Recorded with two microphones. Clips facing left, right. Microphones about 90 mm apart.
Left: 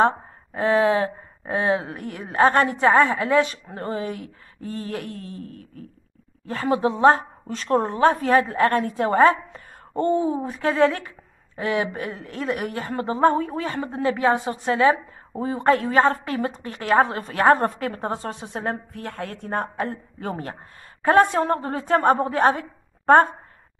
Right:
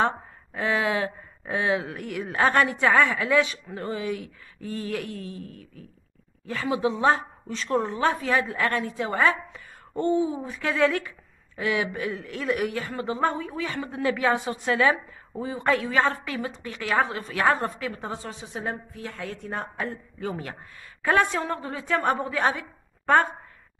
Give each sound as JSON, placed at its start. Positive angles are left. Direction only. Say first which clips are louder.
{"t": 0.0, "sound": "a woman's voice", "louder": "left 5 dB", "side_deg": 30}